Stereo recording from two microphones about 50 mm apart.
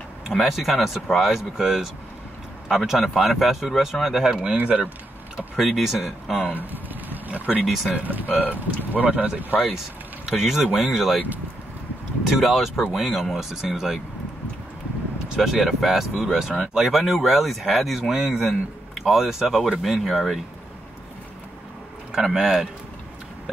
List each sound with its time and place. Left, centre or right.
0.3 s speech: centre
4.3 s speech: centre
5.6 s speech: centre
6.5 s a sound: right
7.6 s speech: centre
8.0 s speech: right
8.3 s speech: left
8.5 s speech: right
10.2 s speech: centre
12.3 s speech: centre
15.2 s speech: centre
22.2 s speech: centre